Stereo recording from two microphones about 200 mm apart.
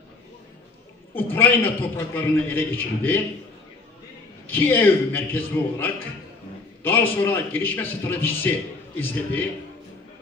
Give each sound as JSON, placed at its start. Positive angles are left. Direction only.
{"t": 1.1, "sound": "a man's voice", "side_deg": 10}
{"t": 4.5, "sound": "a man's voice", "side_deg": 10}
{"t": 6.8, "sound": "a man's voice", "side_deg": 10}